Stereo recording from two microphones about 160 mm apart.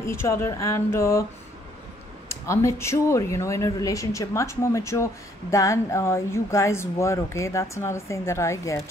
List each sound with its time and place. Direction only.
0.0 s speech: 15° left (ahead or behind)
2.2 s speech: 20° left (ahead or behind)